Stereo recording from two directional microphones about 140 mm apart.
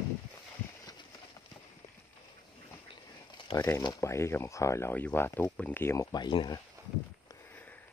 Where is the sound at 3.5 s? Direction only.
40° left (ahead or behind).